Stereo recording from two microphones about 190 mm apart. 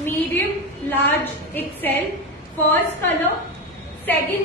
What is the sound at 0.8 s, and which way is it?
A woman's voice, 10° left (ahead or behind).